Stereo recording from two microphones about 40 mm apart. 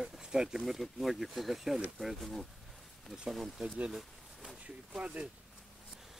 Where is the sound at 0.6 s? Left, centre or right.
Centre.